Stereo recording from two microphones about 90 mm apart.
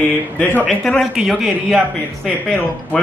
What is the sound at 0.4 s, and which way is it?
Speech, 20° left (ahead or behind).